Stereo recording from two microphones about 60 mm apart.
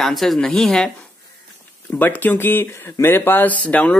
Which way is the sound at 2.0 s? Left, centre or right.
Left.